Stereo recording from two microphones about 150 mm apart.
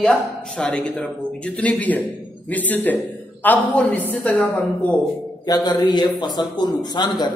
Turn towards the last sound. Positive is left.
turn(degrees=30)  # may be behind; listen again after turning